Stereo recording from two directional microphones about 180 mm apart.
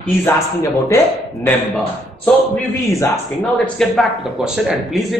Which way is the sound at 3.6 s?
Centre (ahead or behind).